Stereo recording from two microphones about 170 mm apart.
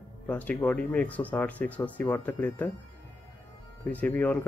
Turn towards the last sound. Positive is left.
turn(degrees=10)  # may be behind; listen again after turning